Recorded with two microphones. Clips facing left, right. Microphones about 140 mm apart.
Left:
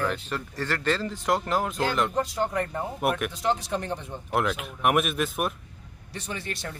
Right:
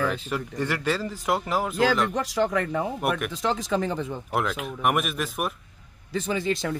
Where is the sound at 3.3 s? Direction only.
90° right.